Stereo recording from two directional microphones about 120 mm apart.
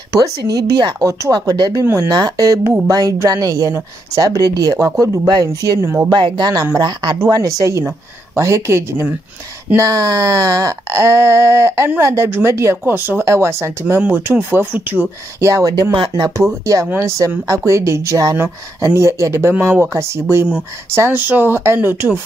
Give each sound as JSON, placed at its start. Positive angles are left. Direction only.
{"t": 0.2, "sound": "speech", "side_deg": -30}
{"t": 6.0, "sound": "speech", "side_deg": -40}
{"t": 15.4, "sound": "speech", "side_deg": -30}
{"t": 16.9, "sound": "speech", "side_deg": -25}